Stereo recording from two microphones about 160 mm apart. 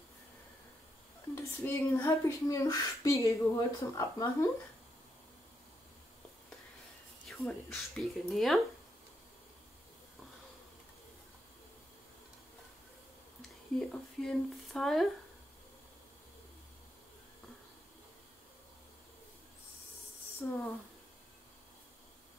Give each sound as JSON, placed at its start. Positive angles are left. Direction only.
{"t": 1.3, "sound": "speech", "side_deg": 15}
{"t": 7.2, "sound": "speech", "side_deg": 0}
{"t": 13.7, "sound": "speech", "side_deg": 0}
{"t": 20.4, "sound": "speech", "side_deg": 15}